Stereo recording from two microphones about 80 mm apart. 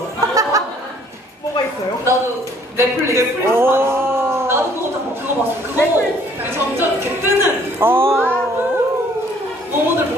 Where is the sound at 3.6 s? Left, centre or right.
Right.